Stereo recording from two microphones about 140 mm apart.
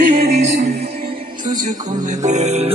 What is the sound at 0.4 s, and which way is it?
Music, 55° right (ahead or behind).